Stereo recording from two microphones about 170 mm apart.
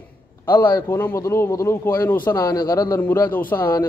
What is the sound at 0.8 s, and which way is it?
A man's voice, 15° left (ahead or behind).